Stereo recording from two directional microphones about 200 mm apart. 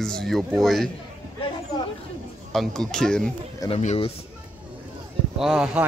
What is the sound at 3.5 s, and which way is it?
Speech, 30° left (ahead or behind).